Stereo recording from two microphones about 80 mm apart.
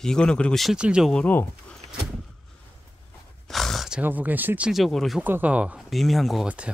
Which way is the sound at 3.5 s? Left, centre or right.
Centre.